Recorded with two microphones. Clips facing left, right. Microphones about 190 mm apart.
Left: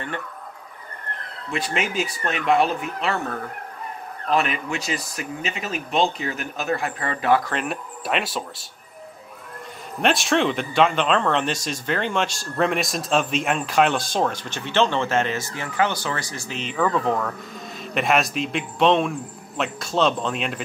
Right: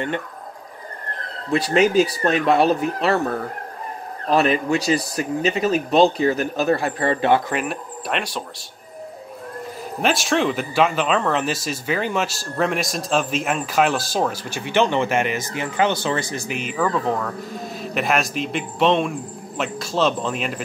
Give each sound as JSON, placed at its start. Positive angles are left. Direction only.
{"t": 1.5, "sound": "speech", "side_deg": -35}
{"t": 7.5, "sound": "speech", "side_deg": 0}
{"t": 10.0, "sound": "speech", "side_deg": 0}